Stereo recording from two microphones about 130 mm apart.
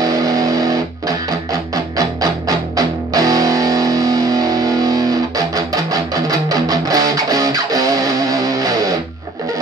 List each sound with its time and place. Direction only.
0.0 s music: 25° right (ahead or behind)